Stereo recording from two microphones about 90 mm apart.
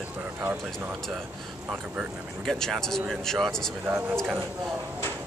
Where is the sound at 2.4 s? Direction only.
5° left (ahead or behind).